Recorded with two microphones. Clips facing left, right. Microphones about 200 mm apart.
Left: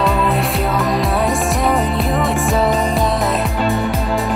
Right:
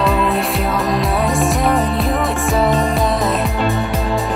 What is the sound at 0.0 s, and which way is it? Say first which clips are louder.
Music: even; centre (ahead or behind).